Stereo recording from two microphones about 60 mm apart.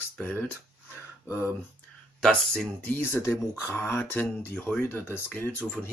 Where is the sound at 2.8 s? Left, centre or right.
Left.